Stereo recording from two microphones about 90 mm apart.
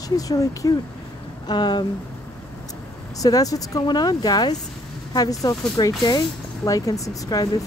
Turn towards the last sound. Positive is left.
turn(degrees=40)  # may be behind; listen again after turning